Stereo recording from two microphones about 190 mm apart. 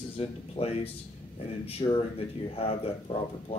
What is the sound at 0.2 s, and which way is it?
Speech, 30° left (ahead or behind).